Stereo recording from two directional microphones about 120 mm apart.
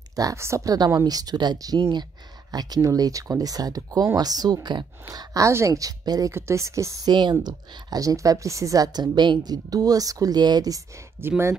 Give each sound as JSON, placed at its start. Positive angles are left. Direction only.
{"t": 0.1, "sound": "speech", "side_deg": -30}
{"t": 11.1, "sound": "speech", "side_deg": -20}